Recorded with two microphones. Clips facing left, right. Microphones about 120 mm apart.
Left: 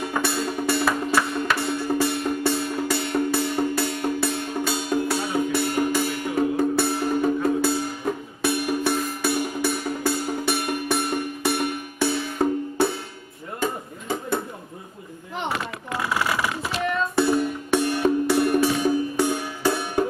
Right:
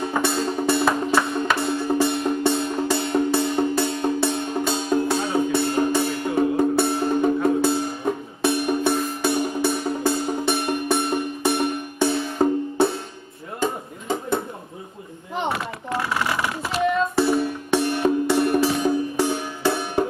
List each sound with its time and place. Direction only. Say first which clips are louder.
0.0 s music: right 3 dB; 25° right (ahead or behind)
13.6 s a sound: right 2 dB; 20° right (ahead or behind)
17.2 s music: left 3 dB; centre (ahead or behind)